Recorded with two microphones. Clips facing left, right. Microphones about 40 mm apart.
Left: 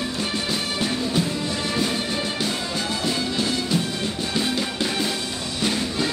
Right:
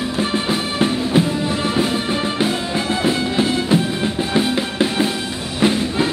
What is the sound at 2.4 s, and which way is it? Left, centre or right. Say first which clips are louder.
Music: right 6 dB; right.